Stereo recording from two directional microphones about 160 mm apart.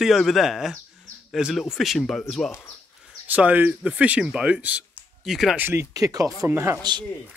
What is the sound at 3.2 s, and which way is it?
Speech, 10° right (ahead or behind).